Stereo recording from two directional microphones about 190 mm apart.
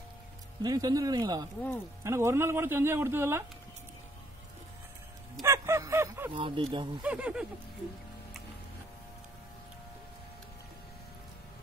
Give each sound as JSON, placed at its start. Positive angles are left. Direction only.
{"t": 0.6, "sound": "a man's voice", "side_deg": -20}
{"t": 5.4, "sound": "a sound", "side_deg": -15}
{"t": 6.3, "sound": "a man's voice", "side_deg": -30}
{"t": 7.0, "sound": "speech", "side_deg": -5}